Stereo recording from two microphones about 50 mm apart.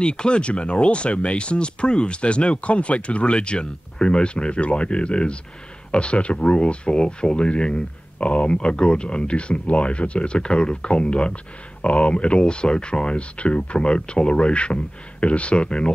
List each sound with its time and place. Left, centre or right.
0.0 s speech: centre